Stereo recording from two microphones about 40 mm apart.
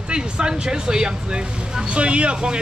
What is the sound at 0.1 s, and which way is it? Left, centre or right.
Speech, right.